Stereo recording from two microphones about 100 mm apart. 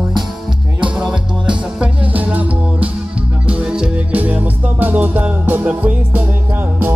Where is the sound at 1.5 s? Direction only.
15° right (ahead or behind).